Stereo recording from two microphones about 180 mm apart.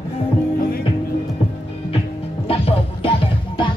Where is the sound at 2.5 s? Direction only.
30° left (ahead or behind).